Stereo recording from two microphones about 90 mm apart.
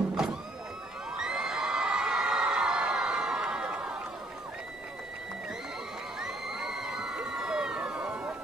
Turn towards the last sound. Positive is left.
turn(degrees=-5)  # may be behind; listen again after turning